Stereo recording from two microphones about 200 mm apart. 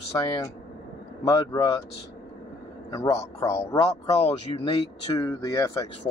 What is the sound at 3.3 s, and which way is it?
Speech, 15° left (ahead or behind).